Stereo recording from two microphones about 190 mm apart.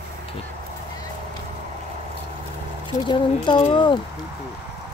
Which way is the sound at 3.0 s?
25° left (ahead or behind).